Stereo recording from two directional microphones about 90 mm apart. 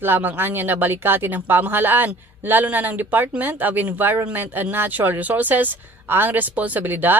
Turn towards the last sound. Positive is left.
turn(degrees=-20)  # may be behind; listen again after turning